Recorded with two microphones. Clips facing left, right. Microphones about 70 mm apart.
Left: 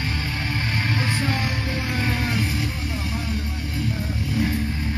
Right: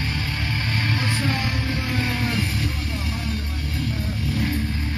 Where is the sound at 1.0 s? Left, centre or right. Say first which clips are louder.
Even; centre.